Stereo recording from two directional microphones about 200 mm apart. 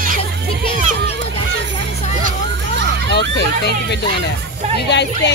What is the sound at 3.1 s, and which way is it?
Speech, 55° left (ahead or behind).